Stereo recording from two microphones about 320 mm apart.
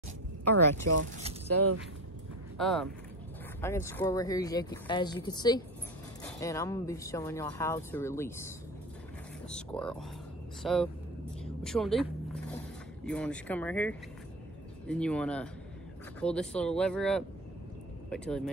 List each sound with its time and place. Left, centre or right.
0.8 s speech: right
2.5 s speech: centre
13.0 s speech: centre